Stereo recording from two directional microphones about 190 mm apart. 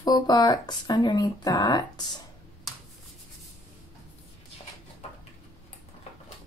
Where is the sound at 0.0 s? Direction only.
20° left (ahead or behind).